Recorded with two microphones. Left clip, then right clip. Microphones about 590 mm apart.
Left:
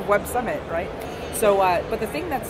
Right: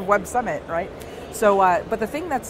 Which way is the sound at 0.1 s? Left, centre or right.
Right.